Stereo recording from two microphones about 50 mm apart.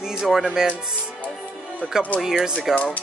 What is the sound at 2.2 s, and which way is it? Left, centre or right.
Music, centre.